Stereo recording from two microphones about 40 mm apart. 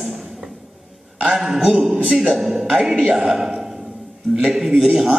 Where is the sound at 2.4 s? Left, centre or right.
Centre.